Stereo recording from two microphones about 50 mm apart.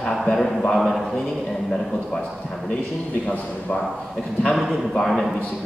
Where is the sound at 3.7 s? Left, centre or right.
Centre.